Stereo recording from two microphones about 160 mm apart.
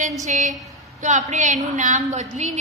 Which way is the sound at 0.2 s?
50° right (ahead or behind).